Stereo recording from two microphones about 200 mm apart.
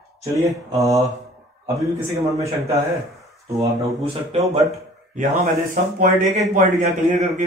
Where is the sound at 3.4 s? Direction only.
15° right (ahead or behind).